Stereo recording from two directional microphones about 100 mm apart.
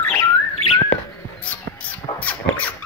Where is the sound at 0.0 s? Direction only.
25° left (ahead or behind).